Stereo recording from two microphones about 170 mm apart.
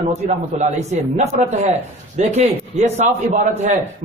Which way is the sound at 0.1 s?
40° right (ahead or behind).